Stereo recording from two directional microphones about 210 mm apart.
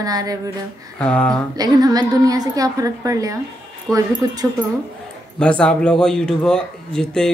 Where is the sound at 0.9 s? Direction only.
5° left (ahead or behind).